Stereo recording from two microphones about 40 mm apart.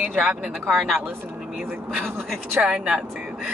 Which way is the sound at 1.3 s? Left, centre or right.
Centre.